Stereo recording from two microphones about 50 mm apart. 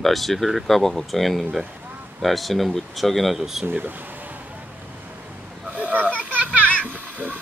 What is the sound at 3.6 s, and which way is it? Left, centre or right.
Speech, right.